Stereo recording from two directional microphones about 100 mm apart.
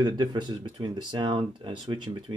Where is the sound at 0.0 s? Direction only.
50° right (ahead or behind).